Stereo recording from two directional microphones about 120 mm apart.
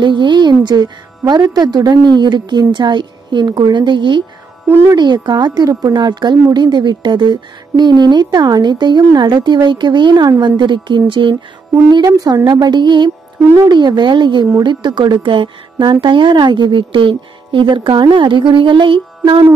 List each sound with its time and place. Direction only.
0.0 s a woman's voice: 40° right (ahead or behind)
4.6 s speech: 20° right (ahead or behind)
4.9 s a woman's voice: 35° right (ahead or behind)
12.1 s a woman's voice: 30° right (ahead or behind); by 19.5 s 45° right (ahead or behind)